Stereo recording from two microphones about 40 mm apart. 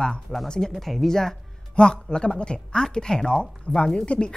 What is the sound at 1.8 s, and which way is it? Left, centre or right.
A woman's voice, left.